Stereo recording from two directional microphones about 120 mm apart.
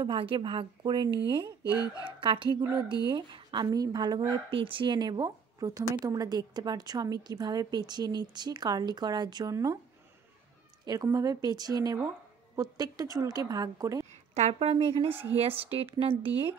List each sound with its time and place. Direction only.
0.0 s a woman's voice: 45° right (ahead or behind)
1.6 s speech: 30° left (ahead or behind)
2.0 s a woman's voice: 45° right (ahead or behind); by 9.8 s 30° right (ahead or behind)
10.9 s a woman's voice: 30° right (ahead or behind)
14.3 s a woman's voice: 65° right (ahead or behind)